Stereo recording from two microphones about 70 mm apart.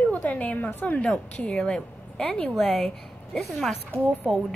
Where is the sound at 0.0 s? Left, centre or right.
Left.